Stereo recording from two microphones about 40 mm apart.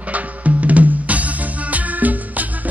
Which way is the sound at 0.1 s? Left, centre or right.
Right.